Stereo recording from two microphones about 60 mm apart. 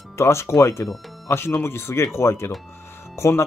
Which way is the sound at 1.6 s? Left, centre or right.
Left.